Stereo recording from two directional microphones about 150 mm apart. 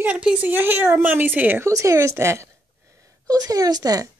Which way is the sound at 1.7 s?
20° right (ahead or behind).